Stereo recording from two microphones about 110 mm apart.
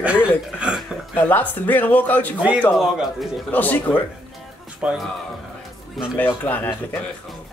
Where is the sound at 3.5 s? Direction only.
15° left (ahead or behind).